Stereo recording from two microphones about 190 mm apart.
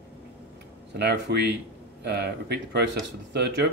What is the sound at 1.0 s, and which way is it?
Speech, 60° right (ahead or behind).